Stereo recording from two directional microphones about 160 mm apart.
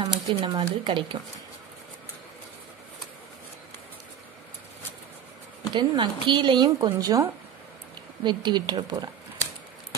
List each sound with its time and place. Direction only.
0.0 s speech: 30° right (ahead or behind)
5.8 s speech: 30° right (ahead or behind)